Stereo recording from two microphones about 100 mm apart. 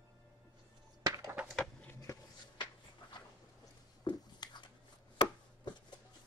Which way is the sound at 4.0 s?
50° left (ahead or behind).